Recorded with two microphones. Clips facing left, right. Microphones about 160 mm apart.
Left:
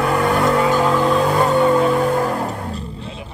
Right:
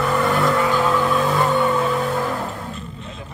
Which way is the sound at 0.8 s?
20° left (ahead or behind).